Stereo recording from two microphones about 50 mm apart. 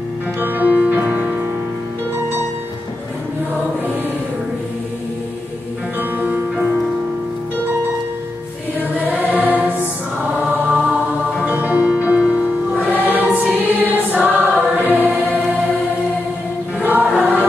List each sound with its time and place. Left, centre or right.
0.4 s music: right
5.9 s music: right
9.0 s choir: right
10.5 s chant: right
11.9 s music: right
12.8 s music: right
13.5 s choir: right
14.2 s music: right
16.8 s choir: right